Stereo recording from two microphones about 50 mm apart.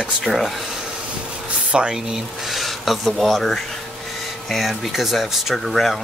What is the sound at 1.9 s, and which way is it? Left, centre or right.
Speech, centre.